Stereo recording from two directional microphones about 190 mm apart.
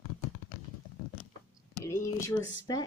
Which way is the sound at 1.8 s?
15° left (ahead or behind).